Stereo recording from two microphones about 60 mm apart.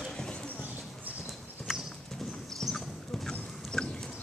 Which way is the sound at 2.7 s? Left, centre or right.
Centre.